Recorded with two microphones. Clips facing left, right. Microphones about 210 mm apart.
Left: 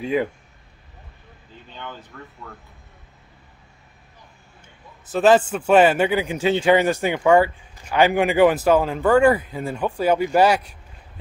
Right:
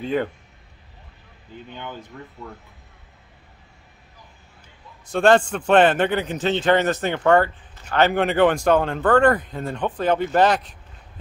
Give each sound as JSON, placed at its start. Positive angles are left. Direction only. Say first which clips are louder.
{"t": 0.0, "sound": "a man's voice", "louder": "left 1 dB", "side_deg": 5}
{"t": 2.1, "sound": "speech", "louder": "right 2 dB", "side_deg": -15}
{"t": 5.0, "sound": "a man's voice", "louder": "left 1 dB", "side_deg": 5}